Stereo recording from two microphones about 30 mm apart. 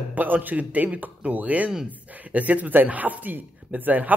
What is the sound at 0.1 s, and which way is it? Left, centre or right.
Speech, right.